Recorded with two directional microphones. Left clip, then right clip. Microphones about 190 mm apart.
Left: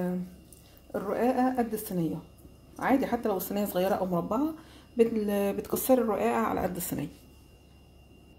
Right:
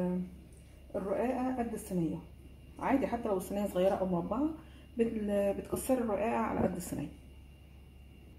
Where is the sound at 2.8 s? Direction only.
45° left (ahead or behind).